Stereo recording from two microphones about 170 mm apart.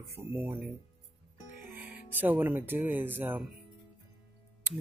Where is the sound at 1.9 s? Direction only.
10° right (ahead or behind).